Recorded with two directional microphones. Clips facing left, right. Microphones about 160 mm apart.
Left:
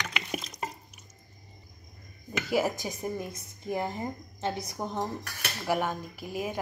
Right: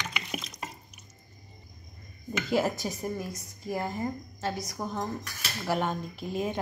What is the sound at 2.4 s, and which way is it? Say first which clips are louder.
Speech: right 1 dB; 10° left (ahead or behind).